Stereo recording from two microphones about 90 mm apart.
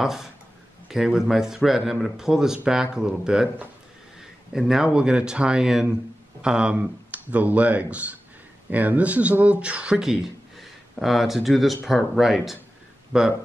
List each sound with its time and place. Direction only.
0.0 s speech: 5° right (ahead or behind)